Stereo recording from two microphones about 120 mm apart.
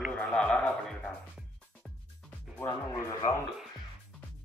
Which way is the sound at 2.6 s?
25° left (ahead or behind).